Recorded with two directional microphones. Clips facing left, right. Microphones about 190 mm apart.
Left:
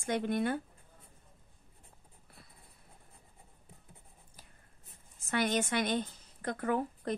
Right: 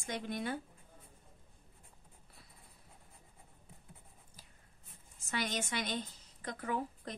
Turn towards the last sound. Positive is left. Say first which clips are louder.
# left 6 dB
turn(degrees=55)  # may be behind; listen again after turning